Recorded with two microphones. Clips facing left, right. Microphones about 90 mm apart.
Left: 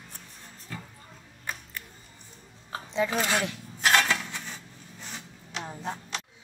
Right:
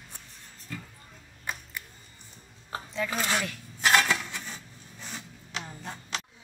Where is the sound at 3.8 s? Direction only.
15° right (ahead or behind).